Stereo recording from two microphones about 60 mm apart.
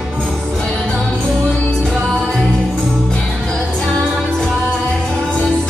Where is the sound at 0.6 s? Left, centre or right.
Centre.